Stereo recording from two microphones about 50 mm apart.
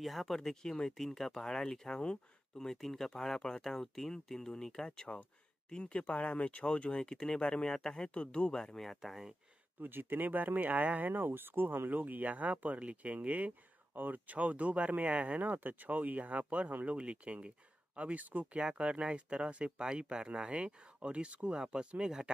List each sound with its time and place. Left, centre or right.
0.0 s speech: centre
6.0 s speech: left; by 8.9 s centre
9.0 s speech: centre
9.8 s speech: right; by 22.3 s centre